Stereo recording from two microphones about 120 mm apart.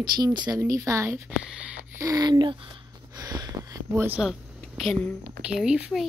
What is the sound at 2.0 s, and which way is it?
Speech, 30° right (ahead or behind).